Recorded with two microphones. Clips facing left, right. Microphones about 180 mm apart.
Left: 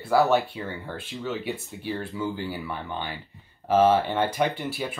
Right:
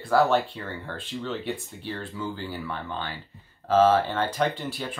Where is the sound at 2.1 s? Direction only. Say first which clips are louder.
Left 3 dB; 20° left (ahead or behind).